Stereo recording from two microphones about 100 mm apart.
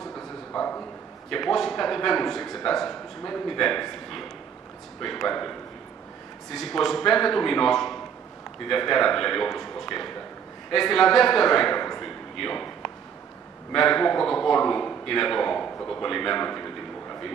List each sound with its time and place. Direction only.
0.0 s bow-wow: 5° left (ahead or behind)
1.3 s a man's voice: centre (ahead or behind)
6.5 s a man's voice: centre (ahead or behind)
12.0 s a sound: 5° left (ahead or behind)
13.7 s a man's voice: 5° left (ahead or behind)